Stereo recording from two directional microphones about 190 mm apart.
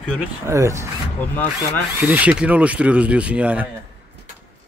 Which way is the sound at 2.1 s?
5° right (ahead or behind).